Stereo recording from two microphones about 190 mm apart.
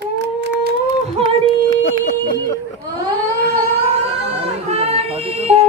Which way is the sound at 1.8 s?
60° left (ahead or behind).